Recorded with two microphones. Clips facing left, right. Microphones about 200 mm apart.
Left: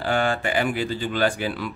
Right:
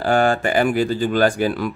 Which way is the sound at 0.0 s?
45° right (ahead or behind).